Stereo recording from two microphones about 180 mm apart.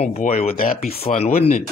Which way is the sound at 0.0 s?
40° left (ahead or behind).